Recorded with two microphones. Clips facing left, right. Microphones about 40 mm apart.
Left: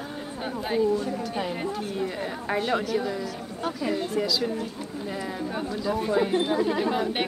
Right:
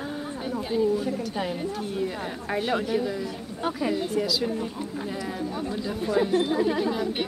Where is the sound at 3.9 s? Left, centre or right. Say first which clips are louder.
Left 2 dB; centre.